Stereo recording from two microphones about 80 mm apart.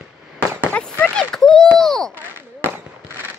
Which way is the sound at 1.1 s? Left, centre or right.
Centre.